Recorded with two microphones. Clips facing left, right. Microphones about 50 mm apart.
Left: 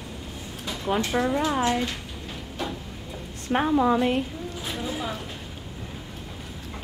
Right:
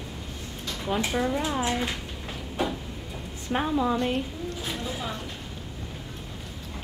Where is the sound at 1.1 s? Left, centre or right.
Centre.